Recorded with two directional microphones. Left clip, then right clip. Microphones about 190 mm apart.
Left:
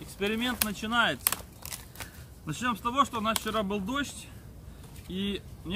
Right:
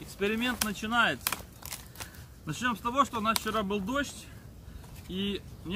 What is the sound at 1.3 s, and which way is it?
Crumpling, 20° left (ahead or behind).